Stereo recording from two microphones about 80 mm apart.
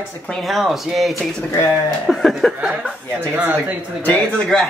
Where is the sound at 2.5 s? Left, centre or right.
Centre.